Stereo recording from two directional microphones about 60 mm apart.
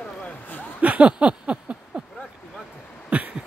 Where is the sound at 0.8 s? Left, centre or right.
Right.